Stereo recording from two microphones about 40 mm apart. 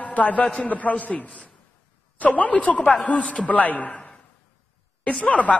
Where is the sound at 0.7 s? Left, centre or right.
Left.